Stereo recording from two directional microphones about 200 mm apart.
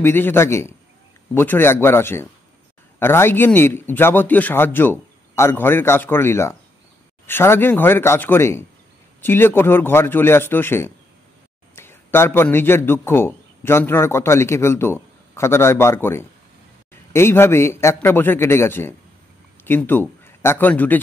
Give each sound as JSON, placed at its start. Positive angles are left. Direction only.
{"t": 0.0, "sound": "a man's voice", "side_deg": 10}